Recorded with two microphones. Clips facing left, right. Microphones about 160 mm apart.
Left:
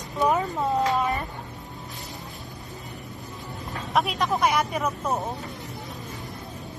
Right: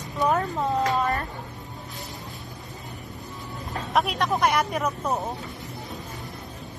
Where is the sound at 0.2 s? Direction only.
5° left (ahead or behind).